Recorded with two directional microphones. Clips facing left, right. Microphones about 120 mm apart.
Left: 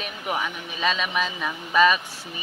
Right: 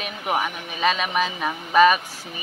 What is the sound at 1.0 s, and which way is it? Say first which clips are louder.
Speech: right 3 dB; 15° right (ahead or behind).